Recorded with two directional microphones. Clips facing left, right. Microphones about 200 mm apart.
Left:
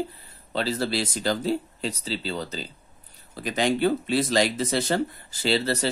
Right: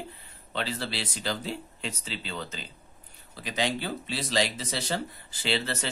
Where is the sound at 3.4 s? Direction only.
50° left (ahead or behind).